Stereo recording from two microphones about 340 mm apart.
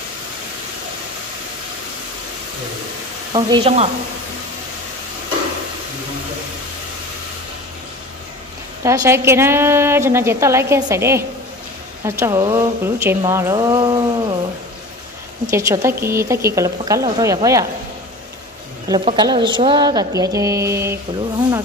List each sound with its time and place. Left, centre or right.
3.3 s a woman's voice: centre
8.8 s a woman's voice: centre
15.5 s a woman's voice: centre
18.9 s a woman's voice: centre